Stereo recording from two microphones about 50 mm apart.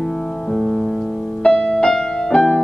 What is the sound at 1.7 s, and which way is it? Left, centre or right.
Music, centre.